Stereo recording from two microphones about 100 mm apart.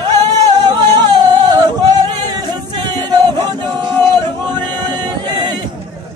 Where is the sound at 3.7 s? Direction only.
45° right (ahead or behind).